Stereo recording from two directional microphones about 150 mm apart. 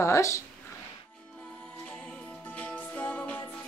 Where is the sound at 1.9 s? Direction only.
10° left (ahead or behind).